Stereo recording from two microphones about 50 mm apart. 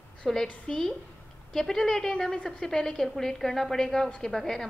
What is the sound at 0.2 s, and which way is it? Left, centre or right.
A woman's voice, centre.